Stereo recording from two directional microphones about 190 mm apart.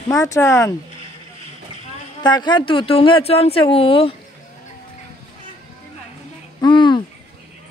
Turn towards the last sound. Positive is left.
turn(degrees=25)  # may be behind; listen again after turning